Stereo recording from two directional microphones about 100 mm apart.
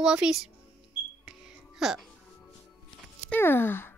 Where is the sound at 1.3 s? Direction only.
5° right (ahead or behind).